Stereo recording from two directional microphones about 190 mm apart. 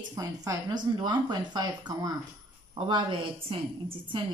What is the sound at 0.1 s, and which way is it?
Speech, 20° right (ahead or behind).